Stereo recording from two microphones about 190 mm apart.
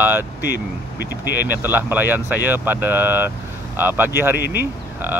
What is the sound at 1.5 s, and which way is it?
Speech, 10° right (ahead or behind).